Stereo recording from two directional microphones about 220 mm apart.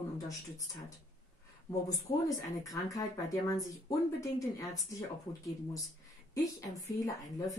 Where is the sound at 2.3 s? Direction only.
15° left (ahead or behind).